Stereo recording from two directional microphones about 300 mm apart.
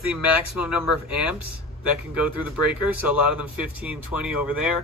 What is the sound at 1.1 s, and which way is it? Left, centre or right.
Speech, left.